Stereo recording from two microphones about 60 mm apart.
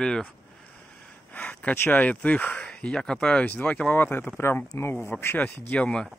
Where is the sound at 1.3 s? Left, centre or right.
Left.